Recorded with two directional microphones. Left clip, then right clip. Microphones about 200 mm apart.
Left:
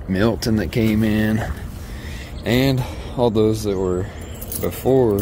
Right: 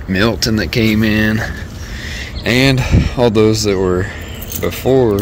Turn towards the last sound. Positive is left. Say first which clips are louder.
# right 4 dB
turn(degrees=10)  # may be behind; listen again after turning